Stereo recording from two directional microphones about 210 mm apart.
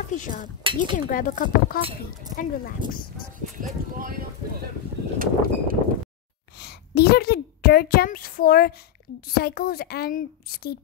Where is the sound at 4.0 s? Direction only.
45° right (ahead or behind).